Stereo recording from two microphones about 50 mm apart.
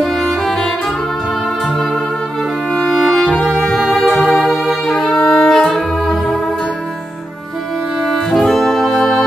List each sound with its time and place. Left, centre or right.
0.0 s music: centre
2.9 s music: centre
3.3 s music: centre
3.8 s music: centre
8.0 s music: centre